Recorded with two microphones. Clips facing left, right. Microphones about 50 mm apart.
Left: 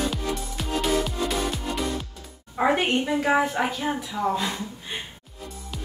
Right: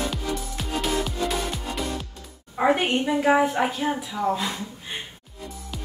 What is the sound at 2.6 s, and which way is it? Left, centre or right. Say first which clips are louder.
A woman's voice: right 1 dB; centre.